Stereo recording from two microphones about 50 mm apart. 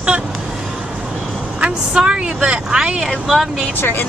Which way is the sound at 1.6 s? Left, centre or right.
Right.